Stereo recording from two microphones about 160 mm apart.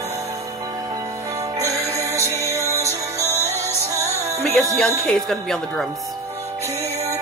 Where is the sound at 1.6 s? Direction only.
20° right (ahead or behind).